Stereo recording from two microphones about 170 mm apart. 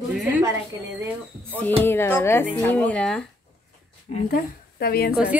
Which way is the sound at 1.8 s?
15° left (ahead or behind).